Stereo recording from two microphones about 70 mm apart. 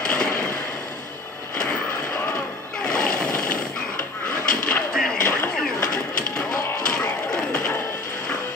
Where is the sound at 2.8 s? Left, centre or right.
Centre.